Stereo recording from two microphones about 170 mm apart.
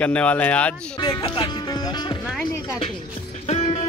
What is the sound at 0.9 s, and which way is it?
Speech, 25° left (ahead or behind).